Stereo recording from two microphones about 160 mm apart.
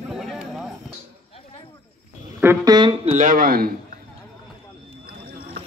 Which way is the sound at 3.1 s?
55° right (ahead or behind).